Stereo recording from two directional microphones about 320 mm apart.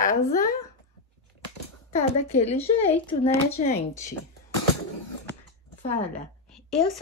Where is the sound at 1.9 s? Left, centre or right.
Centre.